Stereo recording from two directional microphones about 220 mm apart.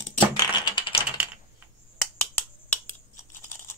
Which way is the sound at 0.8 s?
20° left (ahead or behind).